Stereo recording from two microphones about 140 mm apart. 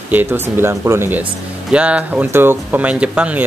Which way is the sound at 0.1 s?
15° right (ahead or behind).